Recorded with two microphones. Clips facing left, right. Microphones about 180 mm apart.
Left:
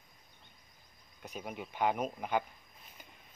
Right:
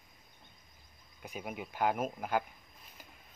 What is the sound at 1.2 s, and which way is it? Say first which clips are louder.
Speech: right 1 dB; 5° right (ahead or behind).